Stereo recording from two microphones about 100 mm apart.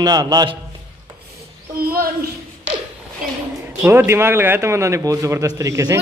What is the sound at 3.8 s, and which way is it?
A man's voice, 25° right (ahead or behind).